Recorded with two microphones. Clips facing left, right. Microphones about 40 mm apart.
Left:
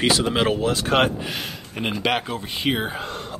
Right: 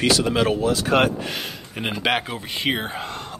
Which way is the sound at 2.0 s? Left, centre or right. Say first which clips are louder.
Right 2 dB; centre.